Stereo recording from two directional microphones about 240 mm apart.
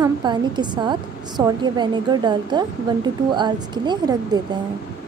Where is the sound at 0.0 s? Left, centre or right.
Centre.